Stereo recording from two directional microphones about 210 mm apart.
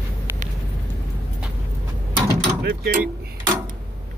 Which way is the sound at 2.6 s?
55° right (ahead or behind).